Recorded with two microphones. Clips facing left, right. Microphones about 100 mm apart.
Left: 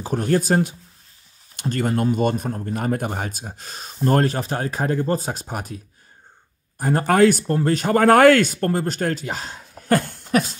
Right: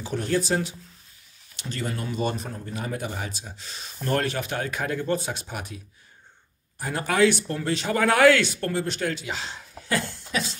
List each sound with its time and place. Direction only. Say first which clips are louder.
0.0 s speech: left 5 dB; 45° left (ahead or behind)
6.8 s speech: left 6 dB; 45° left (ahead or behind)